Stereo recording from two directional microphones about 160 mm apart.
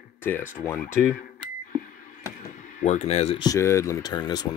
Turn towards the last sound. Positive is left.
turn(degrees=25)  # may be behind; listen again after turning